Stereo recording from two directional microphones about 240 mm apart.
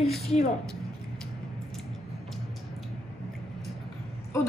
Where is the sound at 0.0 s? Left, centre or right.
Centre.